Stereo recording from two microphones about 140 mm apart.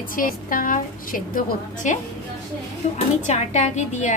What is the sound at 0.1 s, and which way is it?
A woman's voice, 85° left.